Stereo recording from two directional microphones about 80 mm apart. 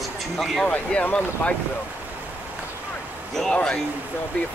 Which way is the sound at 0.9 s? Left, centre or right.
Centre.